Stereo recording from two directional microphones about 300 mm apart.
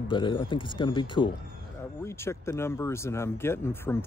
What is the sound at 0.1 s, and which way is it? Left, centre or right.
Speech, centre.